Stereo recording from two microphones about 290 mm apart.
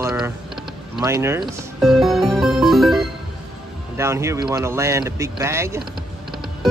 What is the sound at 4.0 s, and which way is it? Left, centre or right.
Speech, centre.